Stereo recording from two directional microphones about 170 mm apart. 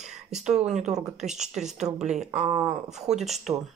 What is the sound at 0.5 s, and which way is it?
Speech, 40° right (ahead or behind).